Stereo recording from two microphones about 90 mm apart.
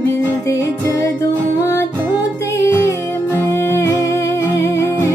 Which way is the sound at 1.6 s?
35° left (ahead or behind).